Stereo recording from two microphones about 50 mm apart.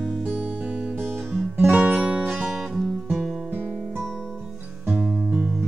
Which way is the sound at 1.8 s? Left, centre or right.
Right.